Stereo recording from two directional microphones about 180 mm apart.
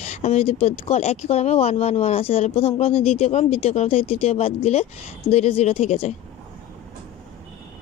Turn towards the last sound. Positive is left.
turn(degrees=35)  # may be behind; listen again after turning